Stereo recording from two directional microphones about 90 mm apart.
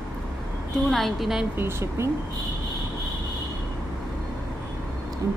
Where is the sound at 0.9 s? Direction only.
Centre (ahead or behind).